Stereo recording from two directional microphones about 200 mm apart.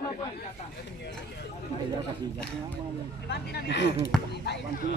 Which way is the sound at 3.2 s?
55° left (ahead or behind).